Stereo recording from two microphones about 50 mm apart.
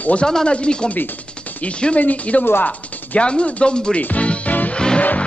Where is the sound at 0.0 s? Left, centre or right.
Left.